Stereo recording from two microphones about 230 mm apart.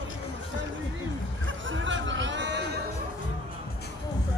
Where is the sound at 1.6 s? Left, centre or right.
Right.